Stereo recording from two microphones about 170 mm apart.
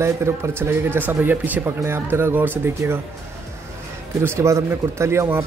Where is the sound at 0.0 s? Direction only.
15° right (ahead or behind).